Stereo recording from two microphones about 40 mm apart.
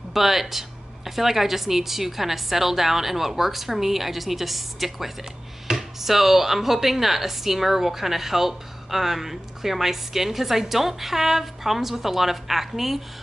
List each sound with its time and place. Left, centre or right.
0.1 s a woman's voice: centre